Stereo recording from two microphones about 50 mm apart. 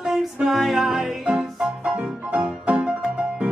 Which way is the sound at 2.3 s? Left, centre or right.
Right.